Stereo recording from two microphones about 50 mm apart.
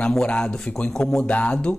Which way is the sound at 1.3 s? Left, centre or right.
Left.